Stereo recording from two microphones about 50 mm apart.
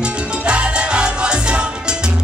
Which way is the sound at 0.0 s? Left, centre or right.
Right.